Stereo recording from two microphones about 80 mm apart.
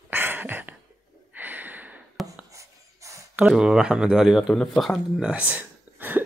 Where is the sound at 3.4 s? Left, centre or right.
Centre.